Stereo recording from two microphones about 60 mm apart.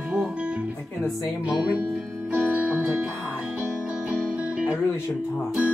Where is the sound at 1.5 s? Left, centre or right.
Centre.